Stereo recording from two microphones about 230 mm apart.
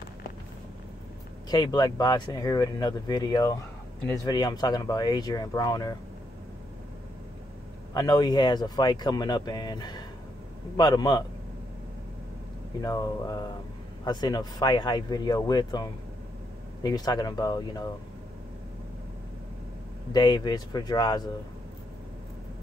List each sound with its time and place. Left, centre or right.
1.5 s speech: centre
7.9 s speech: centre
12.8 s speech: centre
20.1 s speech: centre